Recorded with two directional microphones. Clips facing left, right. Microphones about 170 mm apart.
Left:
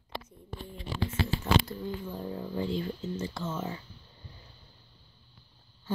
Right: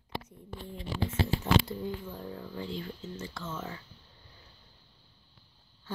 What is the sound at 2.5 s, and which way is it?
Speech, 35° left (ahead or behind).